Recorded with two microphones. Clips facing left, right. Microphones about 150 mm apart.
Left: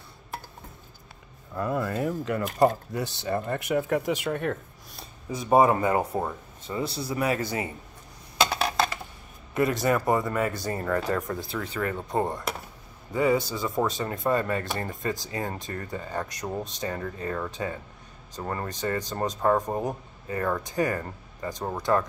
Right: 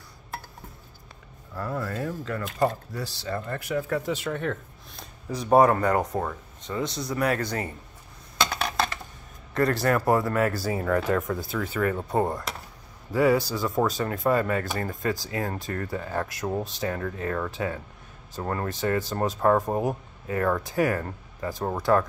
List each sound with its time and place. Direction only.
1.5 s speech: 20° left (ahead or behind)
8.4 s a sound: 5° left (ahead or behind)
9.5 s speech: 5° left (ahead or behind)